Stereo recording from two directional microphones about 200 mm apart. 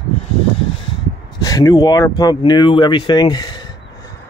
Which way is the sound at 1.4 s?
20° left (ahead or behind).